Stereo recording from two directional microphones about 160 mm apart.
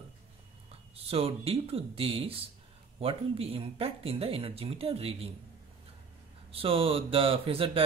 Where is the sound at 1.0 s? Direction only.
35° right (ahead or behind).